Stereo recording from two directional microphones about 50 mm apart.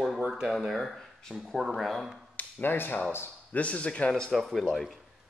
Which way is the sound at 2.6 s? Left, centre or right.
Left.